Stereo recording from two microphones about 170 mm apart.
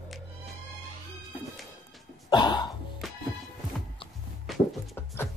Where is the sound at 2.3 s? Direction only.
25° left (ahead or behind).